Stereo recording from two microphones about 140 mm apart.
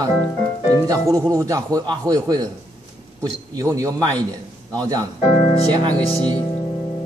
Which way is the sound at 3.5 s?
25° right (ahead or behind).